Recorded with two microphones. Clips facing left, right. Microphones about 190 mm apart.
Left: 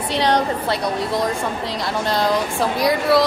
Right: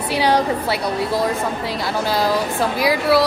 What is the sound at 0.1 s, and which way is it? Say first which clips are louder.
A woman's voice: right 1 dB; 5° right (ahead or behind).